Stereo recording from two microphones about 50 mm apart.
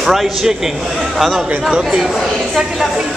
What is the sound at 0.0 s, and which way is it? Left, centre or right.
A man's voice, centre.